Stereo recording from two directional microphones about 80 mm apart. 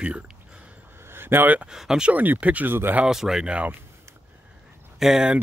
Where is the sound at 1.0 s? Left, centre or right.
Right.